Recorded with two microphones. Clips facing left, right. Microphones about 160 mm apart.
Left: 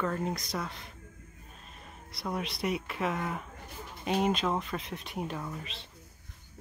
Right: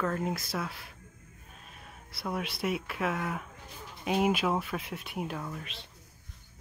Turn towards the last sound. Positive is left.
turn(degrees=0)  # may be behind; listen again after turning